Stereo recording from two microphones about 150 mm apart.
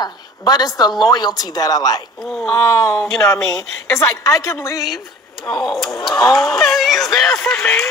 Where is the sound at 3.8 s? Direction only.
20° left (ahead or behind).